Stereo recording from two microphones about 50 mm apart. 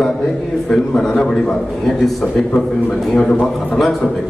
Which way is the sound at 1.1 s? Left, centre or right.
Centre.